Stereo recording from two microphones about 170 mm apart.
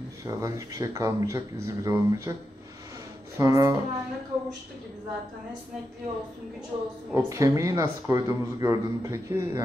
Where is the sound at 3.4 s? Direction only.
20° right (ahead or behind).